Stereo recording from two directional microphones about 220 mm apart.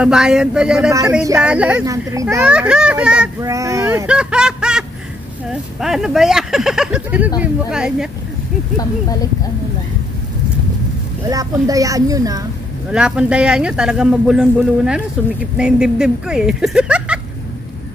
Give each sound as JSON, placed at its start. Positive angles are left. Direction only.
{"t": 0.0, "sound": "a man's voice", "side_deg": -5}
{"t": 11.2, "sound": "speech", "side_deg": -15}
{"t": 12.9, "sound": "a man's voice", "side_deg": -5}